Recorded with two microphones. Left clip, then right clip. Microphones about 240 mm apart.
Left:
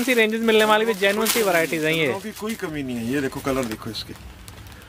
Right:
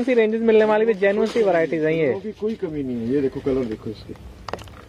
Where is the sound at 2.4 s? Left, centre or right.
Left.